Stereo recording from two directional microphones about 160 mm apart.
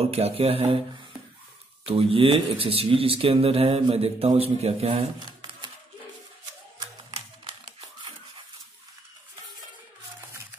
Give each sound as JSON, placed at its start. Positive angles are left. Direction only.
{"t": 0.0, "sound": "speech", "side_deg": -40}
{"t": 1.9, "sound": "speech", "side_deg": -35}
{"t": 5.2, "sound": "a sound", "side_deg": -25}